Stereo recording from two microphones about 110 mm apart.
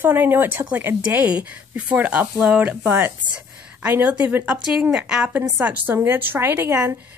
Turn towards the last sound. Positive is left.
turn(degrees=-20)  # may be behind; listen again after turning